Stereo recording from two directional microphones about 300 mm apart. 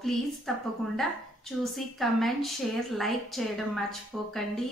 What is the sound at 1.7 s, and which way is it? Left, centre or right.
A woman's voice, centre.